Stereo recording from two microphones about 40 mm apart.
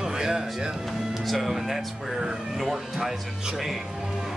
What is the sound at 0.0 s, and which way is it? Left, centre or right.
Music, centre.